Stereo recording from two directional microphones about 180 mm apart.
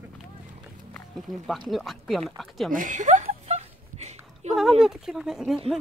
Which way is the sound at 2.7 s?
45° right (ahead or behind).